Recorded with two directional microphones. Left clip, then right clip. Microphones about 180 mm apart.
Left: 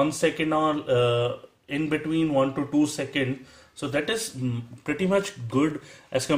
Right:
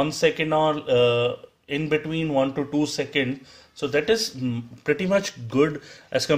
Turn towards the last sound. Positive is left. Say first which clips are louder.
# right 3 dB
turn(degrees=-40)  # may be behind; listen again after turning